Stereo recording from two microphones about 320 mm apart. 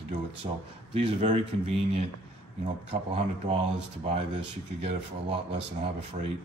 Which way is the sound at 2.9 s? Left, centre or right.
Centre.